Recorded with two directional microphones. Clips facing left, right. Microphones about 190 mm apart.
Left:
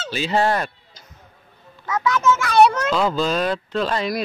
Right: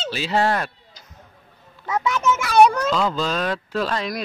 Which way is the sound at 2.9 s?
5° left (ahead or behind).